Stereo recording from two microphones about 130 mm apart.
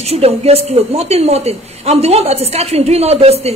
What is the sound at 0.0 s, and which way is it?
A woman's voice, 50° right (ahead or behind).